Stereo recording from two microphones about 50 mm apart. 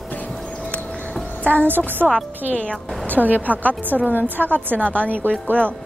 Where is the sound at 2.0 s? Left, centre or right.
Centre.